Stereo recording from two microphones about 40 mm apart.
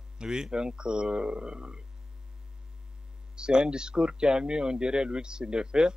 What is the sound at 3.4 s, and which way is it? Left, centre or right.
A man's voice, right.